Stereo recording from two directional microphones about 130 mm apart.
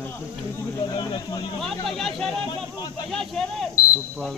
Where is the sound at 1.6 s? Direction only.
Centre (ahead or behind).